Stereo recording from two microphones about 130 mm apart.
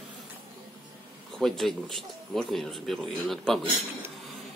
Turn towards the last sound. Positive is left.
turn(degrees=5)  # may be behind; listen again after turning